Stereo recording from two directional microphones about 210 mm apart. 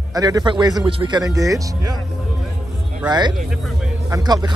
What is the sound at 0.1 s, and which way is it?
Speech, 20° right (ahead or behind).